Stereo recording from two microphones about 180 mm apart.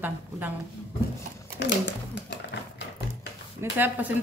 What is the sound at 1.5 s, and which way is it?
Speech, 75° left (ahead or behind).